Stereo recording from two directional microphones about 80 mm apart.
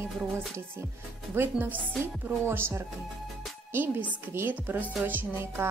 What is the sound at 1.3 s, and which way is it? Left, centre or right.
A woman's voice, right.